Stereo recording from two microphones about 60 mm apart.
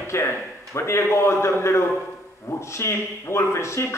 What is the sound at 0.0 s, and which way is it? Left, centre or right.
Speech, left.